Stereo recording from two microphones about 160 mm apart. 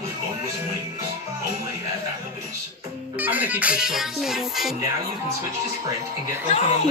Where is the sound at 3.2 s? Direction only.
10° right (ahead or behind).